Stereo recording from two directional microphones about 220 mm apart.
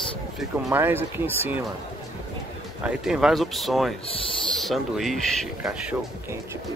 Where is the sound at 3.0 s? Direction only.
Centre (ahead or behind).